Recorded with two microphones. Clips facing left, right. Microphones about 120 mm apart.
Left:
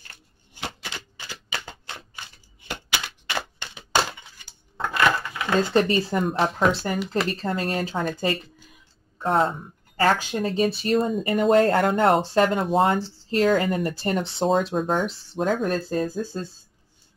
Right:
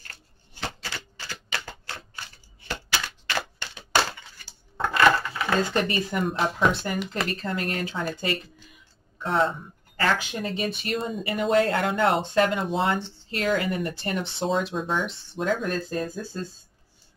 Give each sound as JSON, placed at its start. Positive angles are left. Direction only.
{"t": 0.1, "sound": "typewriter", "side_deg": 15}
{"t": 4.7, "sound": "a sound", "side_deg": 0}
{"t": 5.1, "sound": "a sound", "side_deg": 15}
{"t": 5.7, "sound": "speech", "side_deg": 30}
{"t": 6.3, "sound": "speech", "side_deg": 0}
{"t": 6.7, "sound": "speech", "side_deg": 35}
{"t": 9.2, "sound": "speech", "side_deg": 45}